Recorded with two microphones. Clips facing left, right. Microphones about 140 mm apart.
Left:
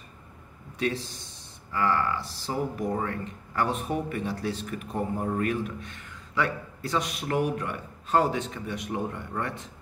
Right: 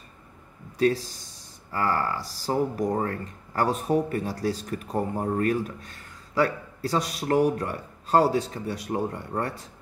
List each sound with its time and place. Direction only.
0.7 s speech: 40° right (ahead or behind)